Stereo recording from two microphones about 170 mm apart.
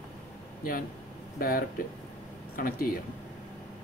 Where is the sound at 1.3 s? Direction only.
60° left (ahead or behind).